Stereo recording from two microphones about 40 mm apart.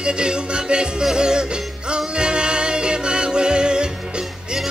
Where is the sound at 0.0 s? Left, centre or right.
Right.